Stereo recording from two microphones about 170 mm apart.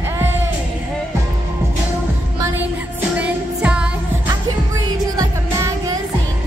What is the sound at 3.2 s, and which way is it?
Music, 5° right (ahead or behind).